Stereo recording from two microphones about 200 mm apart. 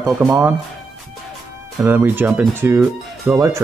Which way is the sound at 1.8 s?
10° right (ahead or behind).